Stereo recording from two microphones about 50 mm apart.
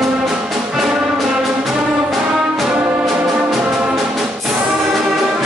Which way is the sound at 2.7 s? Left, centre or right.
Right.